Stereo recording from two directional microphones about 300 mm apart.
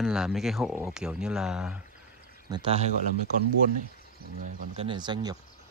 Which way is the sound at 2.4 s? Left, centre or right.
Centre.